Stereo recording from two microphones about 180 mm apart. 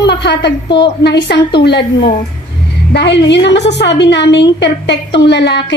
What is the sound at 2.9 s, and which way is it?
A woman's voice, 75° left (ahead or behind).